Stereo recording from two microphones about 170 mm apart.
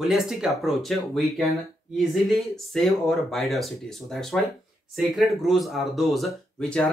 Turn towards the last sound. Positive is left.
turn(degrees=5)  # may be behind; listen again after turning